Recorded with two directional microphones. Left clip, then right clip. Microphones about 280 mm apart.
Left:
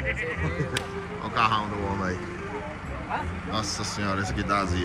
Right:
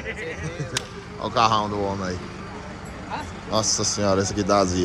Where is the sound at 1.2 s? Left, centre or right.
Centre.